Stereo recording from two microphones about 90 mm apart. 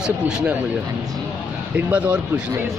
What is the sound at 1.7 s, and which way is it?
Speech, 15° right (ahead or behind).